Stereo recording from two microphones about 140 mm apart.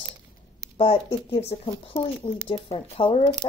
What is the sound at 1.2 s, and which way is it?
Speech, 45° left (ahead or behind).